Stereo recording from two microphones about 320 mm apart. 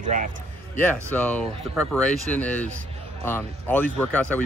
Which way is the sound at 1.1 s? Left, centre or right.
Centre.